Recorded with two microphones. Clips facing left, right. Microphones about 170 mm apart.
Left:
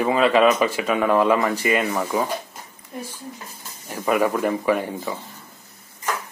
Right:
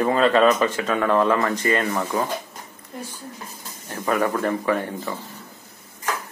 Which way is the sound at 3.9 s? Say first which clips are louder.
Left 2 dB; 10° left (ahead or behind).